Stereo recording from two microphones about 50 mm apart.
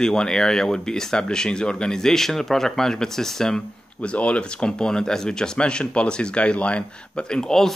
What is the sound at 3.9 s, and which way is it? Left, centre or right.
Speech, left.